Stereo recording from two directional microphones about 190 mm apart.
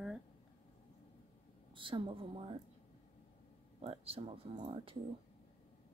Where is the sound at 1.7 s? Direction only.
25° right (ahead or behind).